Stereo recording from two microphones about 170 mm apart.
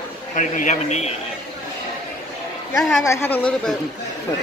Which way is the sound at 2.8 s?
Centre (ahead or behind).